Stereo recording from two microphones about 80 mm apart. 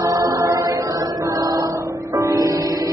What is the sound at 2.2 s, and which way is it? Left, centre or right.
Music, right.